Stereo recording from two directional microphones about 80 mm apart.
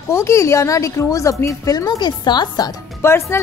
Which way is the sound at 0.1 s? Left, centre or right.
Left.